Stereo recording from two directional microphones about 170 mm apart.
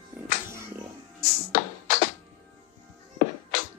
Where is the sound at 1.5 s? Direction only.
50° left (ahead or behind).